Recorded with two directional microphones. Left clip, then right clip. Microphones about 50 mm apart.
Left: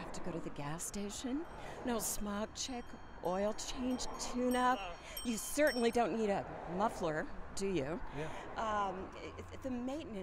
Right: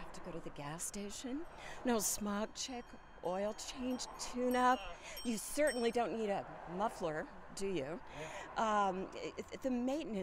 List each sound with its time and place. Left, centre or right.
0.3 s speech: centre
1.9 s a woman's voice: centre
3.3 s speech: centre
8.2 s speech: right